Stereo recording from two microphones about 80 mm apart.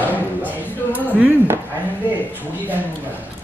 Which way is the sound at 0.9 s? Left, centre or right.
Centre.